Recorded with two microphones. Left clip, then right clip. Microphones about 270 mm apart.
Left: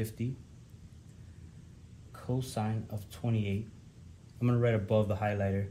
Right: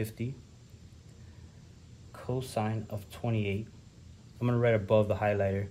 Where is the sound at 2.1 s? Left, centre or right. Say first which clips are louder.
Right 3 dB; right.